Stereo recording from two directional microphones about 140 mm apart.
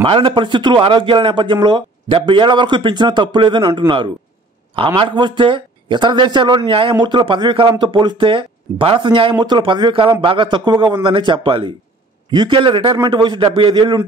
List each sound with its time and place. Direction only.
0.0 s a man's voice: 40° right (ahead or behind)